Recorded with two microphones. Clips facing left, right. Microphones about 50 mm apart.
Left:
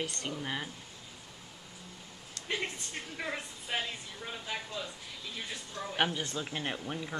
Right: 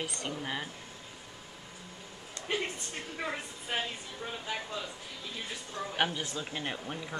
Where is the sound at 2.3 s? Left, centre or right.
Right.